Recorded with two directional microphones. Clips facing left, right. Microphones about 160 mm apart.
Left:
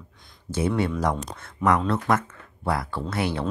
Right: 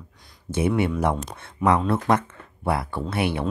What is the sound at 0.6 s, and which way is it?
Speech, 15° right (ahead or behind).